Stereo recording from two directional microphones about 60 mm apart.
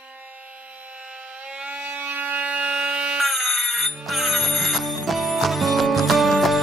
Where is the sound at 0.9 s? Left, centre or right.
Centre.